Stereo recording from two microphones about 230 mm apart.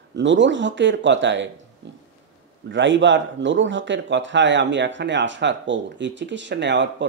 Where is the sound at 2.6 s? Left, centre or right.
Right.